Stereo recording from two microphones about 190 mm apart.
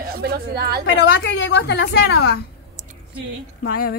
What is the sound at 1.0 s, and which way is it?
Speech, 65° left (ahead or behind).